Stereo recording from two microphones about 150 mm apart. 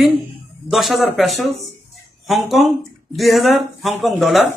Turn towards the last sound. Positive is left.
turn(degrees=0)  # may be behind; listen again after turning